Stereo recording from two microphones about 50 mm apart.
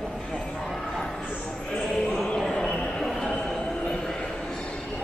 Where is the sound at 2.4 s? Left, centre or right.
Centre.